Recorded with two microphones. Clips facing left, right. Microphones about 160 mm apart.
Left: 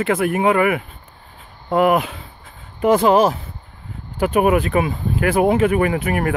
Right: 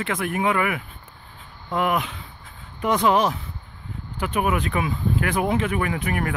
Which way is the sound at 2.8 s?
40° left (ahead or behind).